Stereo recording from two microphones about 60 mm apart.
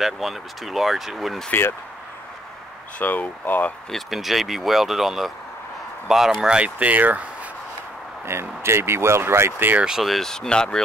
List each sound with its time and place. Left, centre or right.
0.0 s speech: centre
1.5 s speech: left
3.0 s speech: left
3.9 s speech: centre
6.8 s speech: right
8.3 s speech: right
9.8 s speech: centre
10.0 s speech: centre